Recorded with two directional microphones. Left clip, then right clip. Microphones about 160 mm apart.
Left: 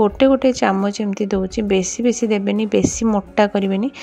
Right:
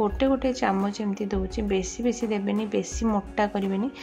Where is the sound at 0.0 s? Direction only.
40° left (ahead or behind).